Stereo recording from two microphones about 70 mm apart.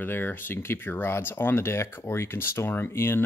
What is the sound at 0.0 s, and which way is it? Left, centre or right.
Speech, left.